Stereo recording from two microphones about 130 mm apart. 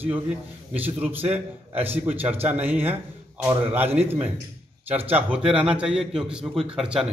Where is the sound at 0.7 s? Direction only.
10° right (ahead or behind).